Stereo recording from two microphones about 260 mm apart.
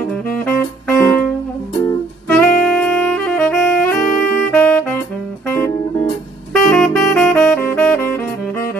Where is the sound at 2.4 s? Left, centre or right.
Centre.